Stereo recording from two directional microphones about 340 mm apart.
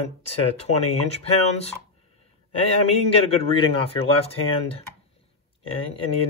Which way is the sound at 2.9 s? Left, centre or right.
Centre.